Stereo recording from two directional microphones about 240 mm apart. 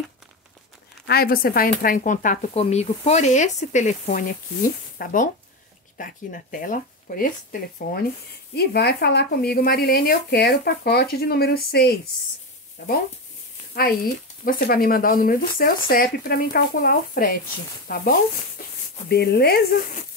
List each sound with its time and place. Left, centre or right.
1.0 s speech: left
8.5 s speech: left
14.4 s speech: left